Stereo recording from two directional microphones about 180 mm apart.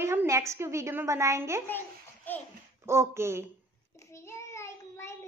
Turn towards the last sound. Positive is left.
turn(degrees=15)  # may be behind; listen again after turning